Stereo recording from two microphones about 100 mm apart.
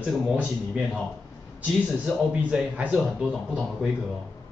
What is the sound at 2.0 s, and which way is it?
Speech, 10° right (ahead or behind).